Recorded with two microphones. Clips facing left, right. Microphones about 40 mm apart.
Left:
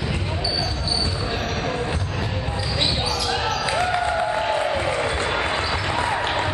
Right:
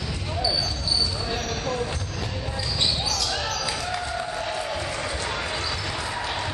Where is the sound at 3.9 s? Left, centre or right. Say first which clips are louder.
Left 7 dB; left.